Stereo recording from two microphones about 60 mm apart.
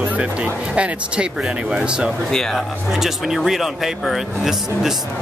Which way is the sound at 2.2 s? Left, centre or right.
Centre.